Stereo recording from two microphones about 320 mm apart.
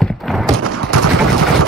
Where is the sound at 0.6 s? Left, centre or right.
Right.